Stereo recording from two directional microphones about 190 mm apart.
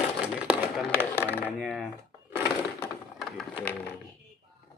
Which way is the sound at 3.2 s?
Centre (ahead or behind).